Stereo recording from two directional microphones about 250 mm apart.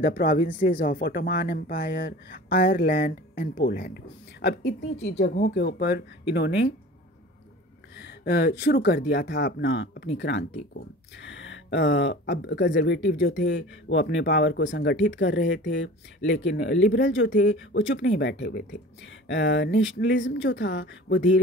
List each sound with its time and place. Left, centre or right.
0.0 s speech: left
8.0 s speech: left